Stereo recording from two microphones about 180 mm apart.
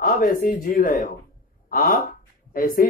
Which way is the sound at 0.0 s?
50° left (ahead or behind).